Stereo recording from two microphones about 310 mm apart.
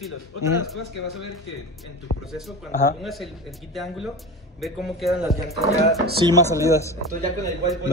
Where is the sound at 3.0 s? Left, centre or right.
Centre.